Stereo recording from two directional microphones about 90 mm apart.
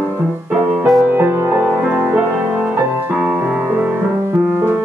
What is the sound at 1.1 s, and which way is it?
Music, 25° right (ahead or behind).